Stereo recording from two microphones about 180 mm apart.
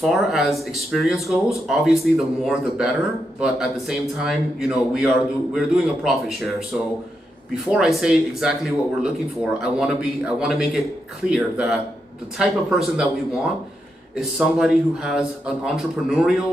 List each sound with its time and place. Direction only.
0.0 s speech: centre (ahead or behind)
7.5 s speech: 5° right (ahead or behind)